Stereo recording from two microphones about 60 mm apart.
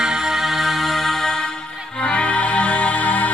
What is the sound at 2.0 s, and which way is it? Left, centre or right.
Music, centre.